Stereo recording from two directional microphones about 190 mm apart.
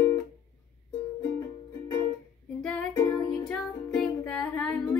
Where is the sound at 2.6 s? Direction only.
5° left (ahead or behind).